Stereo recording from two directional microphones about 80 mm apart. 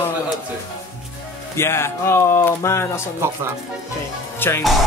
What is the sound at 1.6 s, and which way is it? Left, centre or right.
Speech, left.